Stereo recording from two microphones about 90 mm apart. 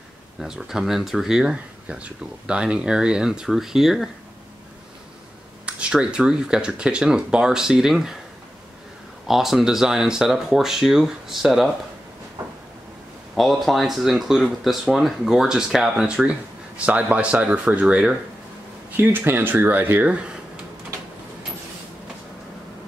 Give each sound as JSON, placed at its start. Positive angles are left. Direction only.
{"t": 0.4, "sound": "speech", "side_deg": -5}
{"t": 5.7, "sound": "speech", "side_deg": -10}
{"t": 9.3, "sound": "speech", "side_deg": -5}
{"t": 13.4, "sound": "speech", "side_deg": 0}
{"t": 18.9, "sound": "speech", "side_deg": -25}